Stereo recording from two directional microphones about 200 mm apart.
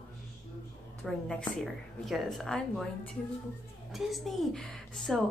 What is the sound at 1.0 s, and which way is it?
A woman's voice, 5° left (ahead or behind).